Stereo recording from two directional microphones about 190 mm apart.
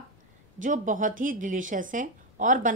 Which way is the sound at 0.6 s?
45° right (ahead or behind).